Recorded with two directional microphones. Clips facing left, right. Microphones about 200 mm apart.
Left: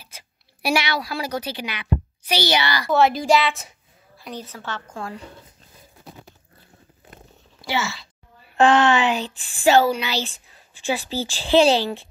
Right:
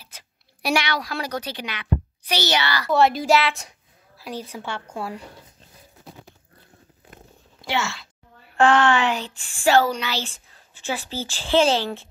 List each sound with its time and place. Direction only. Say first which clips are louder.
0.1 s speech: left 2 dB; 10° left (ahead or behind)
2.9 s a woman's voice: even; centre (ahead or behind)
7.6 s speech: even; centre (ahead or behind)
8.5 s speech: left 1 dB; 20° left (ahead or behind)